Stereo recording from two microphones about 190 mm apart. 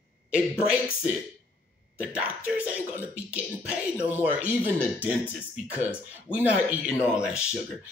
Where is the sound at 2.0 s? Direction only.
5° right (ahead or behind).